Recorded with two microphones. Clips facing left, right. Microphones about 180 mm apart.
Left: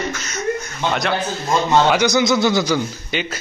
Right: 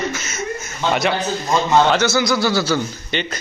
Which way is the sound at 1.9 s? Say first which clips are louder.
Left 1 dB; 15° left (ahead or behind).